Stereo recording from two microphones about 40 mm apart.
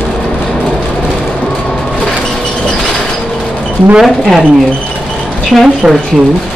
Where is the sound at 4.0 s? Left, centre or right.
Centre.